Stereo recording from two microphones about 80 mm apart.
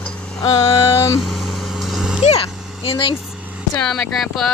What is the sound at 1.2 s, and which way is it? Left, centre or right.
Vehicle, centre.